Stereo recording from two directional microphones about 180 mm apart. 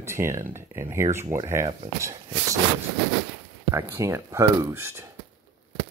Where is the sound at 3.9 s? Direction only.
15° right (ahead or behind).